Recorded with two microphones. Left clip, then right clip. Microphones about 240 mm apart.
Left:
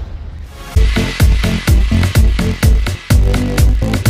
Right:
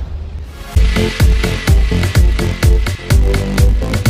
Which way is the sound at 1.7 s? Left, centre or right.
Centre.